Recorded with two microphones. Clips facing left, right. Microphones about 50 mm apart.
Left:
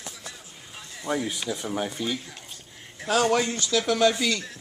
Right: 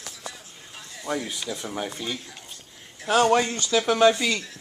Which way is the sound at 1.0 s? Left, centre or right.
Centre.